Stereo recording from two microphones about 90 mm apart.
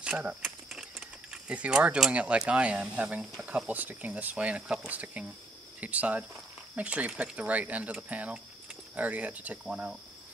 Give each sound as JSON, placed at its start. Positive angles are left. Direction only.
{"t": 0.0, "sound": "speech", "side_deg": -15}